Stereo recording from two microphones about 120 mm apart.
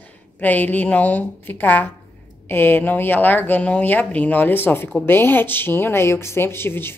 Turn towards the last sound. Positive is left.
turn(degrees=20)  # may be behind; listen again after turning